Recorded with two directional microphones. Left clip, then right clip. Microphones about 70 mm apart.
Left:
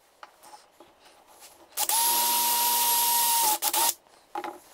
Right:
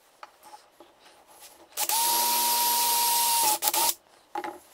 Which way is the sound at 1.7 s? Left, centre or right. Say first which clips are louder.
Even; left.